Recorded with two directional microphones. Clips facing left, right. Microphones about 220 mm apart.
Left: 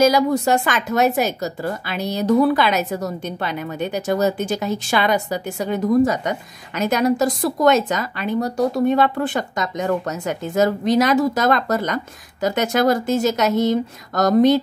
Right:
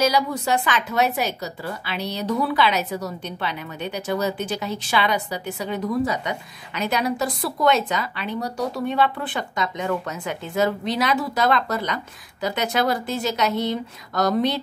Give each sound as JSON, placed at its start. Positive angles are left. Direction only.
{"t": 0.0, "sound": "a woman's voice", "side_deg": 45}